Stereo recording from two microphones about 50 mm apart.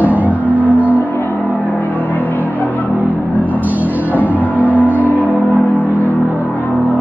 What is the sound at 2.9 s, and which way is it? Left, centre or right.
Music, right.